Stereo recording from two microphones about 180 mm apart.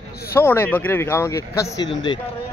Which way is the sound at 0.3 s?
15° left (ahead or behind).